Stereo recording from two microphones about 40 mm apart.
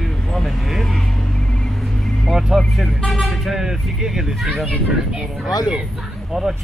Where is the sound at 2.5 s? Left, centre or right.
Centre.